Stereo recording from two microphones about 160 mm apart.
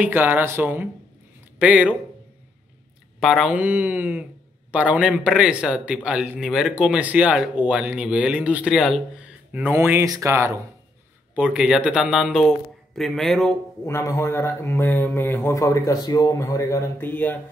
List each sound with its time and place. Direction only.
0.0 s speech: 10° right (ahead or behind)
3.2 s speech: centre (ahead or behind); by 10.6 s 15° right (ahead or behind)
11.3 s speech: 5° right (ahead or behind)
13.8 s speech: 15° left (ahead or behind)